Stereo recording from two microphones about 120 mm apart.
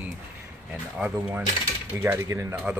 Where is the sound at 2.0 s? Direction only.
20° right (ahead or behind).